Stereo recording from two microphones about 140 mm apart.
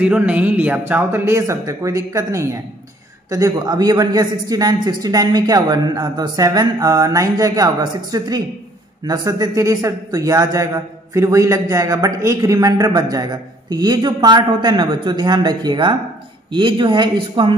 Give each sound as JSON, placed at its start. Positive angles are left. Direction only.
{"t": 0.0, "sound": "a man's voice", "side_deg": -10}